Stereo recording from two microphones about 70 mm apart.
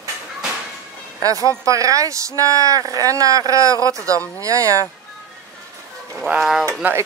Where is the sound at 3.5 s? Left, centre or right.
Right.